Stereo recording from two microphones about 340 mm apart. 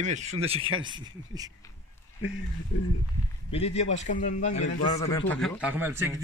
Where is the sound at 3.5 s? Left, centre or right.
Centre.